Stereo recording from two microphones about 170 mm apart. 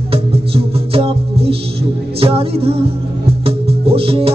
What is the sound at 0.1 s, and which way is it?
Music, 35° right (ahead or behind).